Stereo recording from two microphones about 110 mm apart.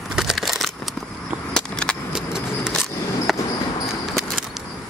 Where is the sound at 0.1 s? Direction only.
5° right (ahead or behind).